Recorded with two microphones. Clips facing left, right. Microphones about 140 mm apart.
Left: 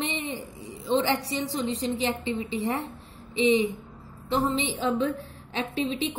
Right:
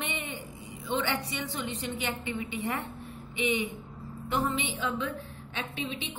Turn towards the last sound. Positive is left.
turn(degrees=35)  # may be behind; listen again after turning